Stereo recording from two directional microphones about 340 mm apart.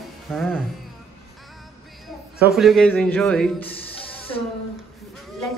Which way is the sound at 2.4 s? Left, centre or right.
Centre.